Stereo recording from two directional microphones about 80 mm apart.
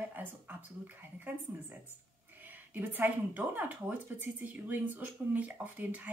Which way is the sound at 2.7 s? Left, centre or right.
Right.